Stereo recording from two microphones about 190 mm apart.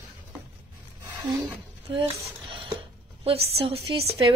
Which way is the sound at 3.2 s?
30° right (ahead or behind).